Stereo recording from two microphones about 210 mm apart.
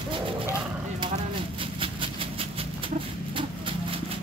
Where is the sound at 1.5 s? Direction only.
25° right (ahead or behind).